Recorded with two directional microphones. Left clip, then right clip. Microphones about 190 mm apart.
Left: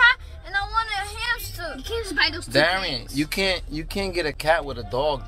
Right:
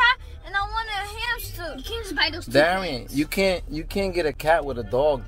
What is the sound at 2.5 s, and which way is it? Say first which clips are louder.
Speech: right 1 dB; 55° right (ahead or behind).